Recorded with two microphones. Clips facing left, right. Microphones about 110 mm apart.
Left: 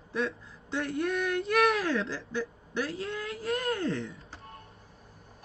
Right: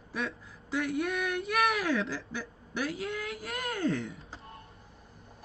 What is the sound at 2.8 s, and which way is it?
A woman's voice, 30° left (ahead or behind).